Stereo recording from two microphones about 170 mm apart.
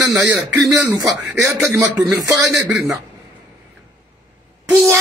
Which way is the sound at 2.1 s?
20° right (ahead or behind).